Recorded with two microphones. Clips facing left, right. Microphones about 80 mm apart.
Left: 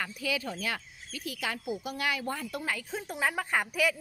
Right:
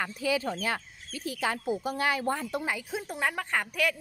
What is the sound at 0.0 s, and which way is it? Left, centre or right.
Speech, right.